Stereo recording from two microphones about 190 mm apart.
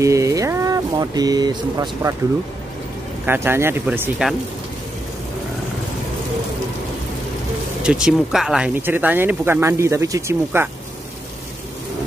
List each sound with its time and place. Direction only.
0.0 s a sound: 15° right (ahead or behind)
3.3 s speech: 10° right (ahead or behind)
7.8 s speech: 5° right (ahead or behind)